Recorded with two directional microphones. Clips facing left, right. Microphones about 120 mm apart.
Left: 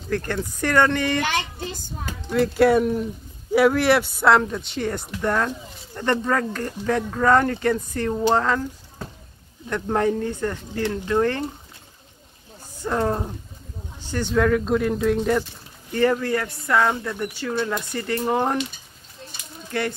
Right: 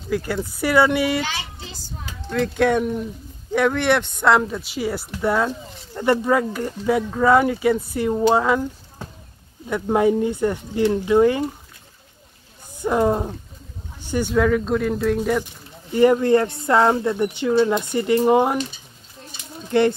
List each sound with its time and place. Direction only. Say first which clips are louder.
0.1 s speech: right 2 dB; 5° right (ahead or behind)
1.6 s speech: left 5 dB; 50° left (ahead or behind)
2.2 s speech: left 2 dB; 5° left (ahead or behind)
12.8 s speech: right 4 dB; 10° right (ahead or behind)
15.9 s speech: right 6 dB; 15° right (ahead or behind)
19.7 s speech: right 9 dB; 25° right (ahead or behind)